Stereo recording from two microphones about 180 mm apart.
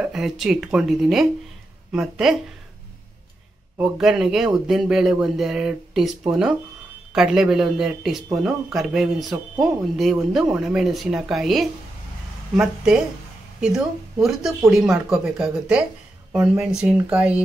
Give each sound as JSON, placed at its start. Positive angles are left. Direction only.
{"t": 0.0, "sound": "speech", "side_deg": 0}
{"t": 3.7, "sound": "speech", "side_deg": -5}